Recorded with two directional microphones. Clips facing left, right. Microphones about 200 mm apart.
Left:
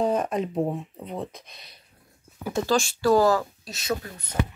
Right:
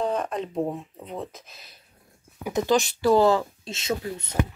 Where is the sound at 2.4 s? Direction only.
20° right (ahead or behind).